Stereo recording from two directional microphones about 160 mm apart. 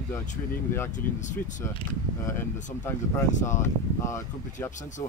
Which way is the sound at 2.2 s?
15° left (ahead or behind).